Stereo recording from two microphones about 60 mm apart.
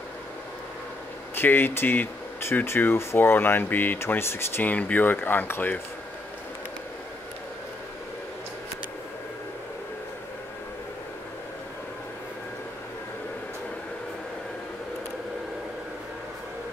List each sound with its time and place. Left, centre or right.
1.3 s speech: left
4.6 s speech: left